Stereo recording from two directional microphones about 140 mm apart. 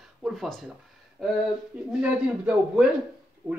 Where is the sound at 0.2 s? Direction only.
Centre (ahead or behind).